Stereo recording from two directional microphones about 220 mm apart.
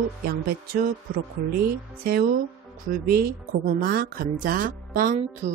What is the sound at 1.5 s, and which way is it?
Speech, 40° right (ahead or behind).